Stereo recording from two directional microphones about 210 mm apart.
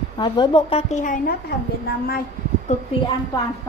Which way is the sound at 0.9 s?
40° left (ahead or behind).